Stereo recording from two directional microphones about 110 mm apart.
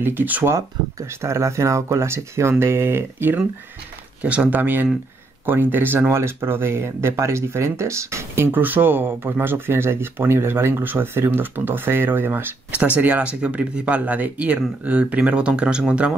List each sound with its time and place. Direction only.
0.0 s speech: 20° right (ahead or behind)
0.6 s speech: 25° right (ahead or behind); by 16.1 s 10° right (ahead or behind)